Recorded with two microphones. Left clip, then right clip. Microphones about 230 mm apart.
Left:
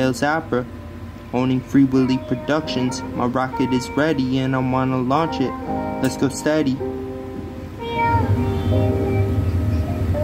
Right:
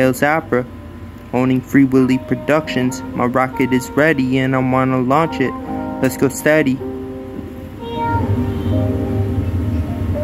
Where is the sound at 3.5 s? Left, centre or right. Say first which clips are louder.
Right 4 dB; left.